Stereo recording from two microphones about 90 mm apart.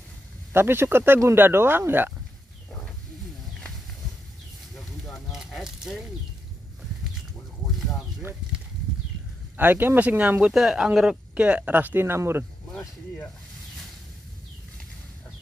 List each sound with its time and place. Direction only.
0.5 s speech: 25° right (ahead or behind)
5.3 s a sound: 5° right (ahead or behind)
9.6 s speech: 20° right (ahead or behind)
10.5 s speech: 5° right (ahead or behind); by 12.4 s 30° right (ahead or behind)